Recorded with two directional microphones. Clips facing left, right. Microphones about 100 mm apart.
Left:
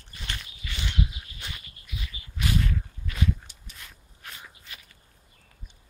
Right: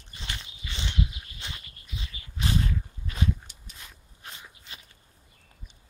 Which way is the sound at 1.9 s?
30° right (ahead or behind).